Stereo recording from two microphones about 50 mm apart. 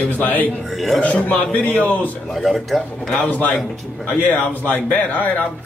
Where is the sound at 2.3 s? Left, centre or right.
Centre.